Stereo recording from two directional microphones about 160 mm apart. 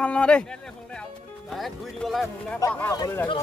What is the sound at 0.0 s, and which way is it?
Speech, 5° left (ahead or behind).